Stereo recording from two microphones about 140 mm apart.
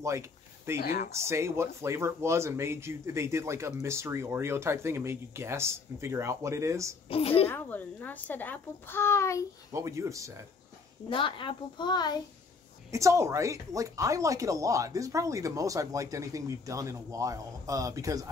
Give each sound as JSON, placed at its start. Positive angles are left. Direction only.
{"t": 0.0, "sound": "a sound", "side_deg": -20}
{"t": 0.7, "sound": "speech", "side_deg": 90}
{"t": 1.3, "sound": "speech", "side_deg": -20}
{"t": 7.1, "sound": "a woman's voice", "side_deg": 45}
{"t": 7.4, "sound": "a child's voice", "side_deg": 15}
{"t": 9.7, "sound": "speech", "side_deg": -20}
{"t": 11.1, "sound": "a child's voice", "side_deg": 35}
{"t": 12.9, "sound": "speech", "side_deg": -20}